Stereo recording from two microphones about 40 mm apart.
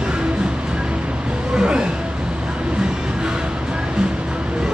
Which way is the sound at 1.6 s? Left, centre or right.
Right.